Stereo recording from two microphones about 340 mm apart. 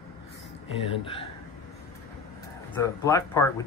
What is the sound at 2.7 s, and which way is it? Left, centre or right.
Speech, centre.